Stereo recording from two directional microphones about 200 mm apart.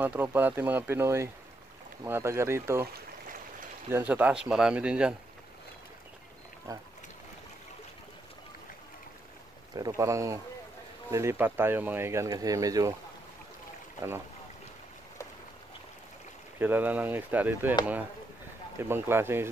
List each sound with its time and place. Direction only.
0.0 s speech: 10° right (ahead or behind)
3.9 s speech: 10° right (ahead or behind)
6.7 s speech: 15° right (ahead or behind)
9.8 s speech: 15° right (ahead or behind)
16.5 s speech: 10° right (ahead or behind)
18.8 s speech: 10° right (ahead or behind)